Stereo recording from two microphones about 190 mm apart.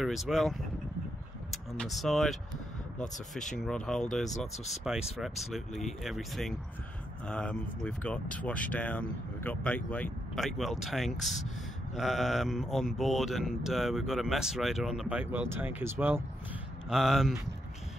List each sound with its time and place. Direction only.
0.0 s speech: centre (ahead or behind)